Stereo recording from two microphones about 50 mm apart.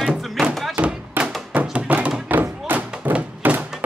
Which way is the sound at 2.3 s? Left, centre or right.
Right.